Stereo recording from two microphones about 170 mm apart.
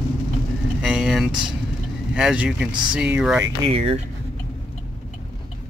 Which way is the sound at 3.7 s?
35° right (ahead or behind).